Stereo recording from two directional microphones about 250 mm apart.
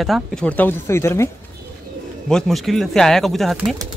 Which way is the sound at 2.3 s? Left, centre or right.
Centre.